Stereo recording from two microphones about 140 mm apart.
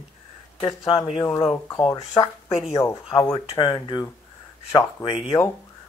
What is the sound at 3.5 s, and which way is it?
Speech, 35° left (ahead or behind).